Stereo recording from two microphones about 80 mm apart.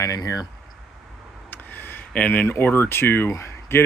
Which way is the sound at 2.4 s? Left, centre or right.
Left.